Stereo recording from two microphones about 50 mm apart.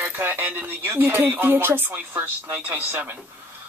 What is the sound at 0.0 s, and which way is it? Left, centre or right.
Speech, right.